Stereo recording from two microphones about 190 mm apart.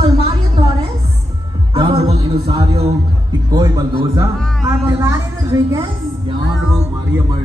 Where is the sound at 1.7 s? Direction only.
30° right (ahead or behind).